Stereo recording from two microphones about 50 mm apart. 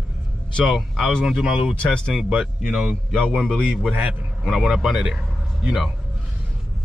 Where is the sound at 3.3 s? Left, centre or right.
Right.